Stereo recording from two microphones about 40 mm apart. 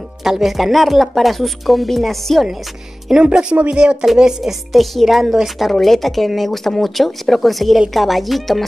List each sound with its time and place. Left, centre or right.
0.2 s a woman's voice: centre
3.3 s speech: right
4.2 s a woman's voice: centre